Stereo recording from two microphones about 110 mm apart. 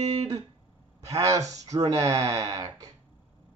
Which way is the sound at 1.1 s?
30° right (ahead or behind).